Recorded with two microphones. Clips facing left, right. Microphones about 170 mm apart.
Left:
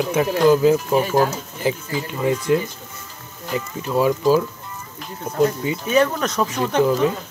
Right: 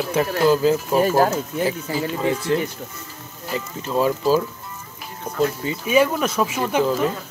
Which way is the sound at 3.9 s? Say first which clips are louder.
Left 2 dB; 15° left (ahead or behind).